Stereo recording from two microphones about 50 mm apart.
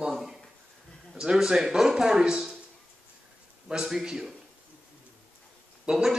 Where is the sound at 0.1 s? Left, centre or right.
Centre.